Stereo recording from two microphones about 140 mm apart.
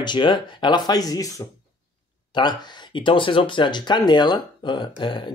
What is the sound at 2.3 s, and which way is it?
Speech, 30° left (ahead or behind).